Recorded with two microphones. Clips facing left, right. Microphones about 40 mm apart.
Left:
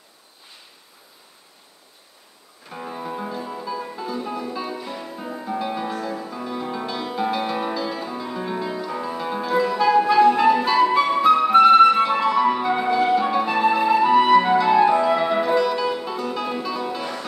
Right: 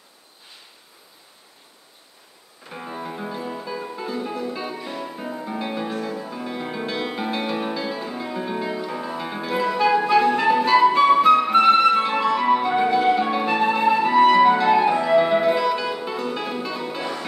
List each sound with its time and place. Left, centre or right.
2.7 s music: centre